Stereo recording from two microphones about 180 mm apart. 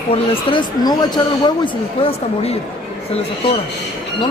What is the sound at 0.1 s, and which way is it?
Speech, 30° left (ahead or behind).